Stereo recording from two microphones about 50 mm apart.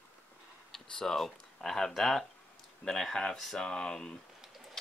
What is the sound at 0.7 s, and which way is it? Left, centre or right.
Speech, centre.